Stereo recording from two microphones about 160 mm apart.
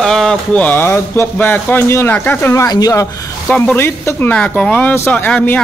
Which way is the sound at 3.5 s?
10° left (ahead or behind).